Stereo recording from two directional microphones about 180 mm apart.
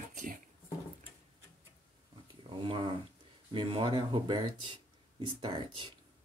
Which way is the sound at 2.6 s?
30° right (ahead or behind).